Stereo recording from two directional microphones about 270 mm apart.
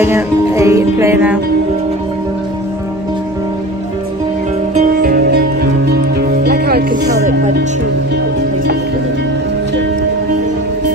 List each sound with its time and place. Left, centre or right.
0.0 s music: centre
4.7 s music: right